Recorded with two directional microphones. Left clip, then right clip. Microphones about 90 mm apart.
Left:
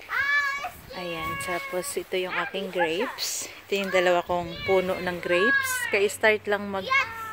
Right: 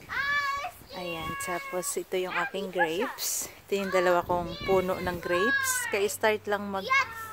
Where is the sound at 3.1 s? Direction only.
45° right (ahead or behind).